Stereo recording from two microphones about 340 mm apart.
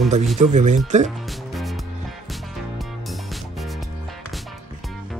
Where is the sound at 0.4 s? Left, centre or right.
Right.